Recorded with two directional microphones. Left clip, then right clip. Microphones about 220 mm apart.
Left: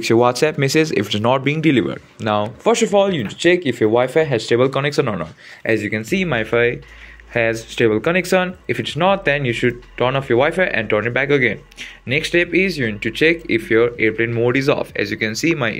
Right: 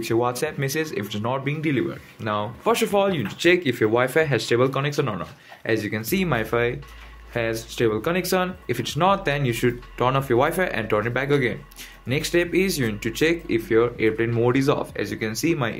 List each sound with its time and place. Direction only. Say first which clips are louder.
0.0 s speech: left 9 dB; 30° left (ahead or behind); by 15.7 s 10° left (ahead or behind)